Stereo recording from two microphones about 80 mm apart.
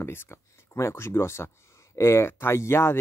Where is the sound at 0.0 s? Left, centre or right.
Left.